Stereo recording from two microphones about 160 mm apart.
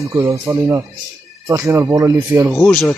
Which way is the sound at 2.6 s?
5° left (ahead or behind).